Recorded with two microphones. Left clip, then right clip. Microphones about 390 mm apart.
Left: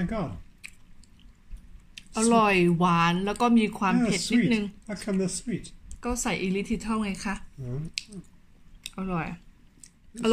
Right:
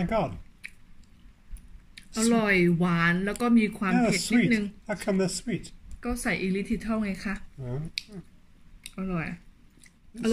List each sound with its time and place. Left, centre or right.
0.0 s speech: centre
2.0 s speech: centre
3.9 s speech: centre
5.9 s a woman's voice: centre
8.9 s speech: centre